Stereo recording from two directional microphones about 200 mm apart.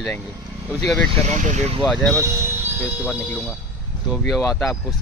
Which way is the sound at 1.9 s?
5° left (ahead or behind).